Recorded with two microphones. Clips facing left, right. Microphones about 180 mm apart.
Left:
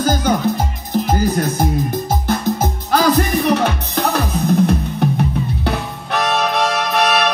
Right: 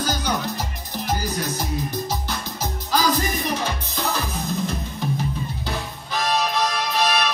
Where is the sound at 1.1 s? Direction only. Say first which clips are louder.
Left 6 dB; 55° left (ahead or behind).